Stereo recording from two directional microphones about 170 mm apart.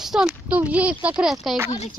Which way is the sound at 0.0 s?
5° right (ahead or behind).